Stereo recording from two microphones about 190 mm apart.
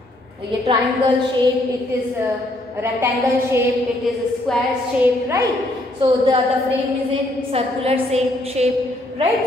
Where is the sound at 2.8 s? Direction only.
15° right (ahead or behind).